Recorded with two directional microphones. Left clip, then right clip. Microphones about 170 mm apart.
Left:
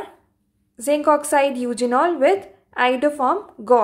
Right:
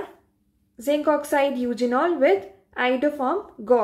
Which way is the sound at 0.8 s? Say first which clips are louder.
Left 4 dB; 10° right (ahead or behind).